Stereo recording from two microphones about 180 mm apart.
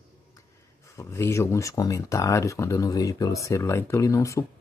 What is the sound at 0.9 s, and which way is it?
Speech, 15° left (ahead or behind).